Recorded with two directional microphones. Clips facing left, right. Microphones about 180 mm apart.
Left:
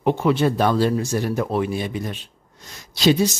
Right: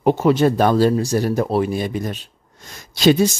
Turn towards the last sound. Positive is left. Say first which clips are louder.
# right 3 dB
turn(degrees=-50)  # may be behind; listen again after turning